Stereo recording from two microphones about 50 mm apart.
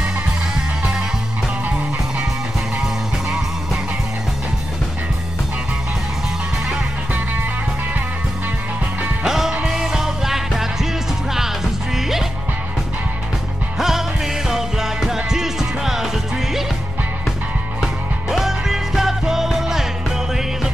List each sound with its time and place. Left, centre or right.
9.2 s music: centre
13.7 s music: centre
18.3 s music: centre